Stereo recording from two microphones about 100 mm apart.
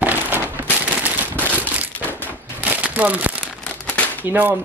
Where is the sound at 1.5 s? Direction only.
15° right (ahead or behind).